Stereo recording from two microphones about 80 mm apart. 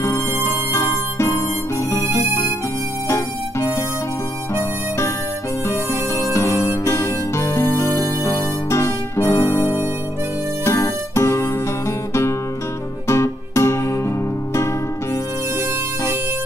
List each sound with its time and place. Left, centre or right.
0.0 s harmonica: left
3.1 s music: left